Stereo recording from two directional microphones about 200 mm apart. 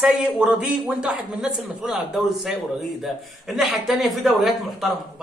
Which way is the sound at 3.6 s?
Centre (ahead or behind).